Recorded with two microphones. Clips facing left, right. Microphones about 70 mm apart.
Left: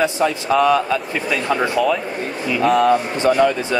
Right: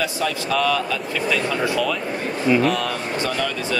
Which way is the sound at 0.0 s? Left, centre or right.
Left.